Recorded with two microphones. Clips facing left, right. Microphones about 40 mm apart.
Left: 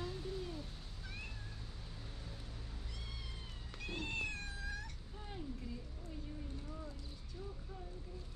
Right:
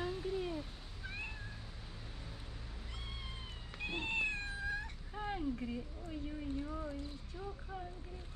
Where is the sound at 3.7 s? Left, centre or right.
Right.